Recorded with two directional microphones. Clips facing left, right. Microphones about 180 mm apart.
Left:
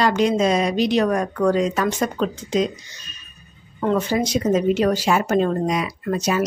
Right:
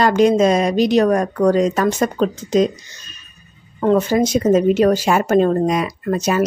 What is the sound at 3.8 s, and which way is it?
Speech, 45° right (ahead or behind).